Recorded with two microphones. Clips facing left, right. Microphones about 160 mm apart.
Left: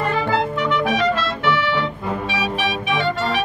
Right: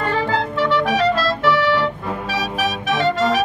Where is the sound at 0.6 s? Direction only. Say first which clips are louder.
Right 2 dB; 35° right (ahead or behind).